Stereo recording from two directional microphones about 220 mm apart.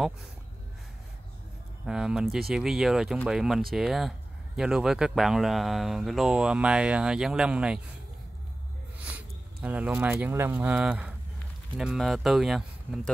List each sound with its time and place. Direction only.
1.9 s speech: 5° right (ahead or behind)
8.9 s speech: 5° right (ahead or behind)